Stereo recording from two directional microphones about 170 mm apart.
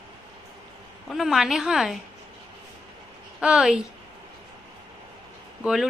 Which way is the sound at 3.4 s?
5° right (ahead or behind).